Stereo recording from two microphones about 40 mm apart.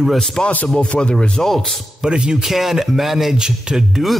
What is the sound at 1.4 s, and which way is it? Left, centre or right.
Speech, centre.